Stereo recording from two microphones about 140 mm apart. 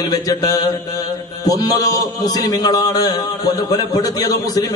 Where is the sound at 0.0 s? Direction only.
25° left (ahead or behind).